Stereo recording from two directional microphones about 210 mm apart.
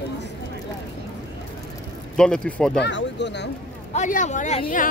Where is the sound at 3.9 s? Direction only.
35° left (ahead or behind).